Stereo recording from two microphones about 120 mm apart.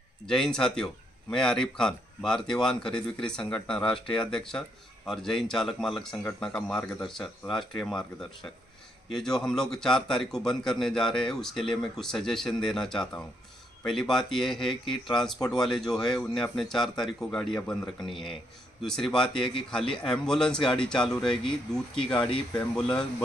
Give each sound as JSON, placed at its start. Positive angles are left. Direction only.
{"t": 0.3, "sound": "speech", "side_deg": 5}
{"t": 21.9, "sound": "speech", "side_deg": 45}
{"t": 22.6, "sound": "speech", "side_deg": 5}